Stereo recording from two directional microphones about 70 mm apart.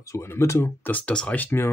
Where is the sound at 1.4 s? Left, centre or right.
Left.